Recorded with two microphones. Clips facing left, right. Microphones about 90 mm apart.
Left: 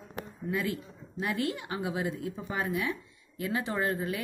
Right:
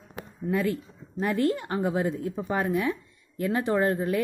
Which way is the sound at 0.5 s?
40° right (ahead or behind).